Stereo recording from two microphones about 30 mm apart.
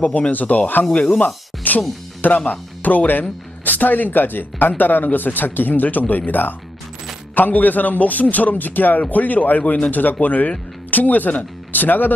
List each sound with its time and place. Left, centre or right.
0.0 s speech: left
0.3 s a man's voice: left
1.2 s music: left
2.2 s a man's voice: left
9.1 s a man's voice: left
10.2 s a man's voice: left